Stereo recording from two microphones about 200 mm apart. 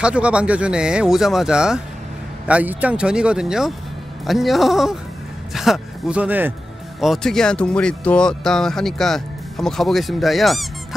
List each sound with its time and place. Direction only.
0.0 s speech: 5° right (ahead or behind)